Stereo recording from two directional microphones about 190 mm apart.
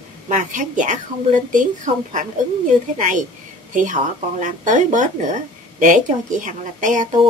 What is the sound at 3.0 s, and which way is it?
Speech, 40° right (ahead or behind).